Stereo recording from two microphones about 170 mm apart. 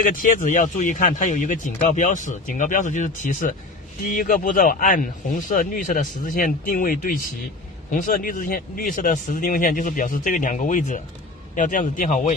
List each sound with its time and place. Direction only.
0.0 s speech: 55° left (ahead or behind)